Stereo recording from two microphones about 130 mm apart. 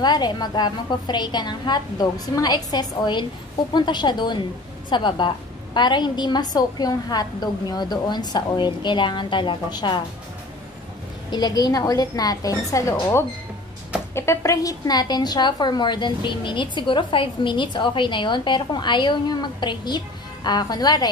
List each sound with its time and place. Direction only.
0.0 s a woman's voice: 35° left (ahead or behind)
11.2 s a woman's voice: 30° left (ahead or behind)